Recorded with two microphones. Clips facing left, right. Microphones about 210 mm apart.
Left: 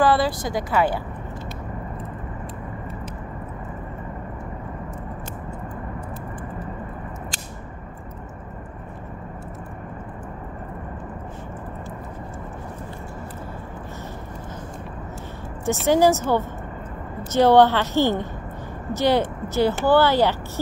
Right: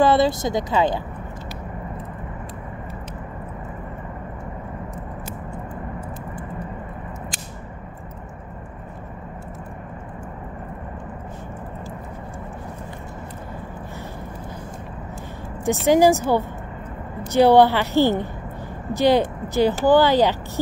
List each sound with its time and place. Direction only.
0.0 s speech: 25° right (ahead or behind)
15.6 s a woman's voice: 15° right (ahead or behind)